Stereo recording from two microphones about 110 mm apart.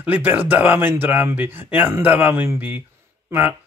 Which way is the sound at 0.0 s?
15° right (ahead or behind).